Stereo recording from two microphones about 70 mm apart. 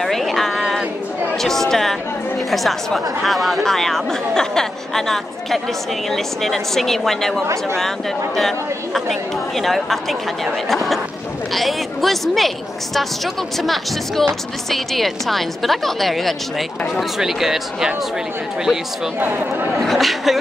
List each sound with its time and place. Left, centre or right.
0.0 s a sound: centre
1.4 s a woman's voice: centre
19.1 s speech: right
19.8 s a woman's voice: centre